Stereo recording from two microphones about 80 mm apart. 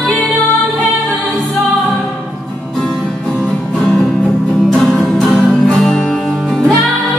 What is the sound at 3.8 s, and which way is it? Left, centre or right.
Music, centre.